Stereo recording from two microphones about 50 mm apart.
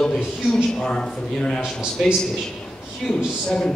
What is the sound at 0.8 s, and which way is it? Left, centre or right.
Speech, centre.